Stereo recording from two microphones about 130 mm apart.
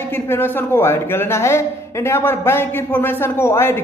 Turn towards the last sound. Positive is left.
turn(degrees=20)  # may be behind; listen again after turning